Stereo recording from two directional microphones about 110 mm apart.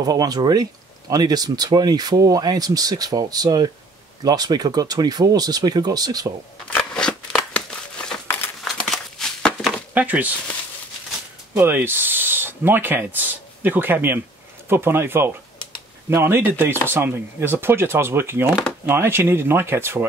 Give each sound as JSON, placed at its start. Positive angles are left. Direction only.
{"t": 0.0, "sound": "speech", "side_deg": -35}
{"t": 6.8, "sound": "a sound", "side_deg": 5}
{"t": 8.6, "sound": "crumpling", "side_deg": 0}
{"t": 9.9, "sound": "speech", "side_deg": -15}
{"t": 11.5, "sound": "speech", "side_deg": -20}